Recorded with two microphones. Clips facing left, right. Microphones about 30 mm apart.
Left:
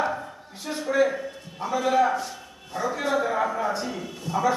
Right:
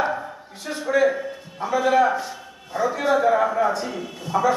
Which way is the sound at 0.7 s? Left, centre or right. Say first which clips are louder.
Right 3 dB; centre.